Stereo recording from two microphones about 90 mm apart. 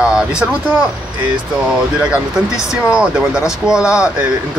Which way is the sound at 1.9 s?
10° right (ahead or behind).